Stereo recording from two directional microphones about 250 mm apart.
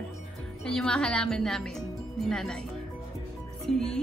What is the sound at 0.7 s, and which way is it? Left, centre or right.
A woman's voice, centre.